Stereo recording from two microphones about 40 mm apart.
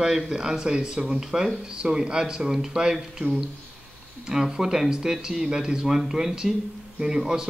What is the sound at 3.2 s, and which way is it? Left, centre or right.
Speech, right.